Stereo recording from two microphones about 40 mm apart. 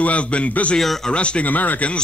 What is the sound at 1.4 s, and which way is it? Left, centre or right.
Speech, left.